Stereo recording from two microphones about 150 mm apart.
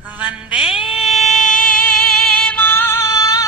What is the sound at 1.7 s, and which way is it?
Music, 10° left (ahead or behind).